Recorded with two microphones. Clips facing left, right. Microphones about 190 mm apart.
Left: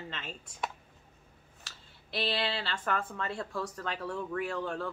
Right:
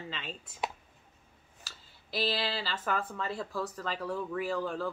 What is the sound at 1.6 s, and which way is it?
Speech, centre (ahead or behind).